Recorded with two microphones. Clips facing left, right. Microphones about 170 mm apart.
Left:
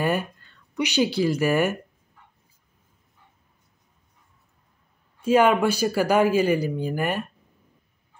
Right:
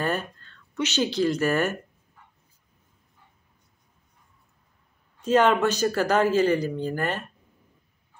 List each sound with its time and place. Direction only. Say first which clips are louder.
0.0 s speech: left 3 dB; 10° left (ahead or behind)
5.2 s speech: left 2 dB; 10° left (ahead or behind)